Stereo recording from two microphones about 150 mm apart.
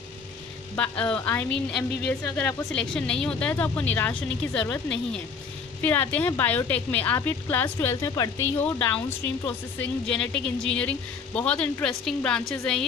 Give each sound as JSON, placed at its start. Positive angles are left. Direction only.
{"t": 0.7, "sound": "speech", "side_deg": 10}